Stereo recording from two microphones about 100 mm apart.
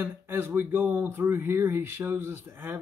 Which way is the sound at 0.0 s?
20° right (ahead or behind).